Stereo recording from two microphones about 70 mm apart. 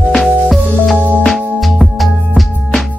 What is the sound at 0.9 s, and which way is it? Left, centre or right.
Music, right.